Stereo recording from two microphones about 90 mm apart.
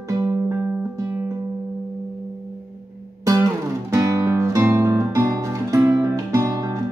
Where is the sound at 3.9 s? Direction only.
35° right (ahead or behind).